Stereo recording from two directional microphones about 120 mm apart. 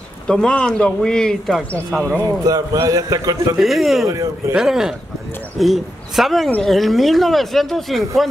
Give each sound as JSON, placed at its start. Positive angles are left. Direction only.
{"t": 0.3, "sound": "speech", "side_deg": 5}
{"t": 2.4, "sound": "a man's voice", "side_deg": -30}
{"t": 3.5, "sound": "speech", "side_deg": 0}
{"t": 4.1, "sound": "speech", "side_deg": -30}
{"t": 4.6, "sound": "speech", "side_deg": -5}